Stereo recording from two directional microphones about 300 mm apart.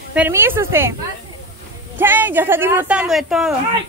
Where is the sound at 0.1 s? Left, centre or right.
Centre.